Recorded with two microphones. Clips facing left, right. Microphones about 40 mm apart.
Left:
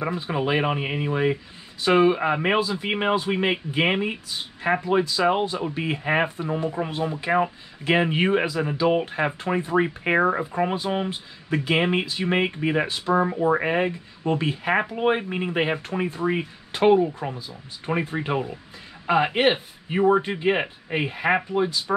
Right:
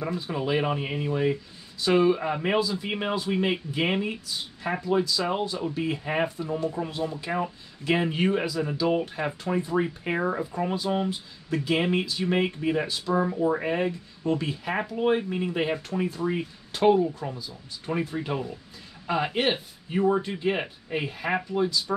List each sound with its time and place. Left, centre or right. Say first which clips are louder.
0.0 s speech: left 4 dB; left